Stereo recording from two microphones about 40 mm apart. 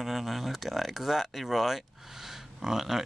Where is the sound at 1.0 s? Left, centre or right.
Centre.